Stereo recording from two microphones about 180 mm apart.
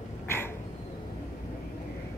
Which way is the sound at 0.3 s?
15° left (ahead or behind).